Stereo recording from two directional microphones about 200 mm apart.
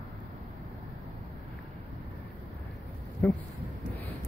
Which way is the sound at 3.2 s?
5° left (ahead or behind).